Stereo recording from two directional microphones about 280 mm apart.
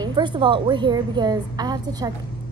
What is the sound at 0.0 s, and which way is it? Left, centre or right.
A woman's voice, centre.